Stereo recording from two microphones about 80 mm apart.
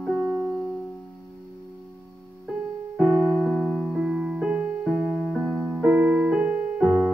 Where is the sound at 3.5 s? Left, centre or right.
Centre.